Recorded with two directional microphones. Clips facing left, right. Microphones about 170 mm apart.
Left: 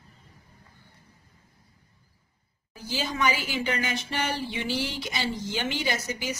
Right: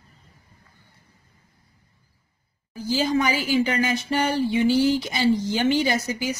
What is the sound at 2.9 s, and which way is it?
Speech, 40° right (ahead or behind).